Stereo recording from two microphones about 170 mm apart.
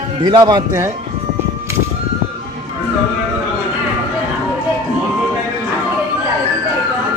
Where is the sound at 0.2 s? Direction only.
25° right (ahead or behind).